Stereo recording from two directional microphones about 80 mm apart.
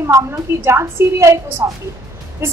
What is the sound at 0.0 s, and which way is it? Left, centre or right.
A woman's voice, right.